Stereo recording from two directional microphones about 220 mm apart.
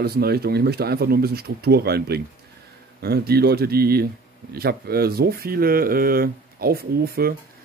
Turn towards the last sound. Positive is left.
turn(degrees=-45)  # may be behind; listen again after turning